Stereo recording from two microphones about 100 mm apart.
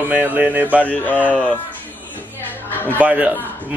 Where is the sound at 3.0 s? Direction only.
15° right (ahead or behind).